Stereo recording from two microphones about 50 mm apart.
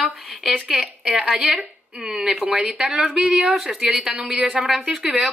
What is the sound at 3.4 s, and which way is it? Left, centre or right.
A woman's voice, centre.